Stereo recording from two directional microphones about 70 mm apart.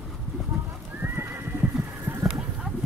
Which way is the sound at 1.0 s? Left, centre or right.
Right.